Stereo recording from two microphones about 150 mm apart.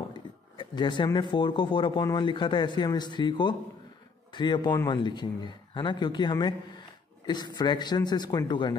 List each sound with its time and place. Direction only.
0.1 s a man's voice: 30° left (ahead or behind)